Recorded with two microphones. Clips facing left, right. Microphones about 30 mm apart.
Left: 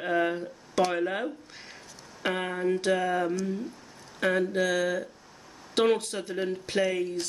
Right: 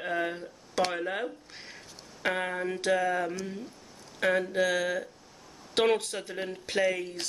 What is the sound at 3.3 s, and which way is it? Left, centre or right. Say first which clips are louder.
Speech: left 6 dB; centre.